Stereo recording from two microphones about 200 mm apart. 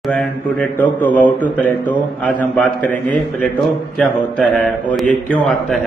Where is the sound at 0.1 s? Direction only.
5° left (ahead or behind).